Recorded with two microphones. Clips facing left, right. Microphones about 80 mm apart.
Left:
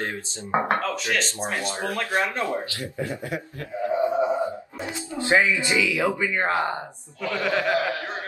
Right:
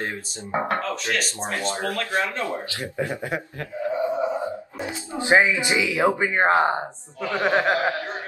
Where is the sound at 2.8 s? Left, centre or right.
Right.